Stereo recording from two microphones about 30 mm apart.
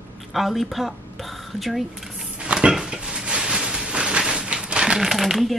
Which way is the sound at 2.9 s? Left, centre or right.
Right.